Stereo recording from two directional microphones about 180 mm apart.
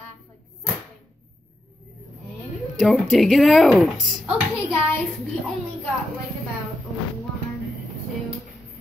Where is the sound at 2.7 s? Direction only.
Centre (ahead or behind).